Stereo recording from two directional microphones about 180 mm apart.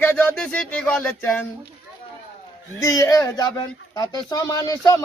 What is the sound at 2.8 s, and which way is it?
Speech, 20° left (ahead or behind).